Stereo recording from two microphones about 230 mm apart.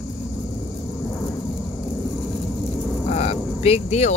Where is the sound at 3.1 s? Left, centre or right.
Left.